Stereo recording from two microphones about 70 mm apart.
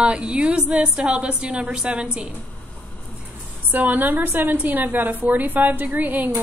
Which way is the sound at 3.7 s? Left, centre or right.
Right.